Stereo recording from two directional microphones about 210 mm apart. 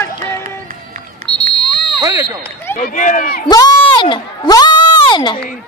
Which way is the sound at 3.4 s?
20° left (ahead or behind).